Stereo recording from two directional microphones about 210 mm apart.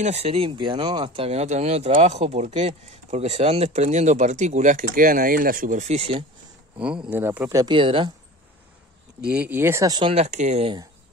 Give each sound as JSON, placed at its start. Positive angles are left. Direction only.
{"t": 0.0, "sound": "speech", "side_deg": -30}
{"t": 7.1, "sound": "speech", "side_deg": -10}
{"t": 7.6, "sound": "speech", "side_deg": -25}
{"t": 9.2, "sound": "speech", "side_deg": -5}